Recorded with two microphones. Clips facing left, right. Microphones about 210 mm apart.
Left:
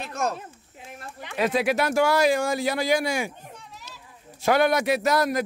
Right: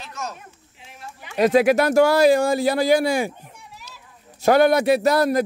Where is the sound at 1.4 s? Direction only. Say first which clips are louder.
Right 7 dB; 45° right (ahead or behind).